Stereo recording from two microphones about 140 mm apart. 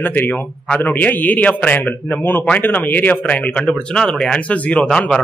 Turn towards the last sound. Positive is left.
turn(degrees=5)  # may be behind; listen again after turning